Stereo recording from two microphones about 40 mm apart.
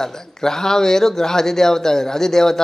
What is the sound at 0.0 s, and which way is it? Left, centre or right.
Speech, centre.